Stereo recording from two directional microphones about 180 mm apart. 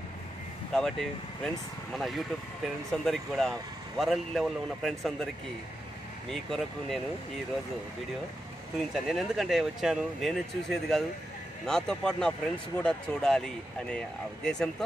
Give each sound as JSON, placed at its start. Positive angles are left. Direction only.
{"t": 0.7, "sound": "speech", "side_deg": 5}
{"t": 6.3, "sound": "speech", "side_deg": 0}
{"t": 8.9, "sound": "speech", "side_deg": 0}